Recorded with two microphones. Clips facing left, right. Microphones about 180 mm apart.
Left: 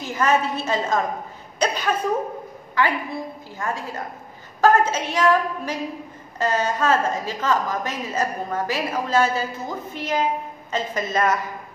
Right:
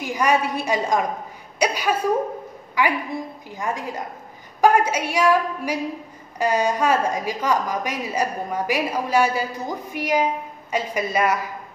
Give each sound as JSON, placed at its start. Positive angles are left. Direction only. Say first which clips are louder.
{"t": 0.0, "sound": "a woman's voice", "louder": "even", "side_deg": -15}
{"t": 1.6, "sound": "a sound", "louder": "right 1 dB", "side_deg": -10}
{"t": 2.8, "sound": "a woman's voice", "louder": "even", "side_deg": -15}